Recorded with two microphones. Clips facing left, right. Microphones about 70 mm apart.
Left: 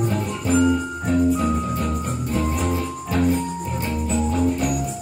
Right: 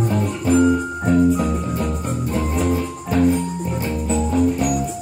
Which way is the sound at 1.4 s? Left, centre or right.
Centre.